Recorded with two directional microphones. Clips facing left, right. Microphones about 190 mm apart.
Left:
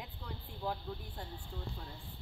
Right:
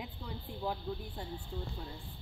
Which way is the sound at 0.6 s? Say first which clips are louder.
Right 2 dB; 5° right (ahead or behind).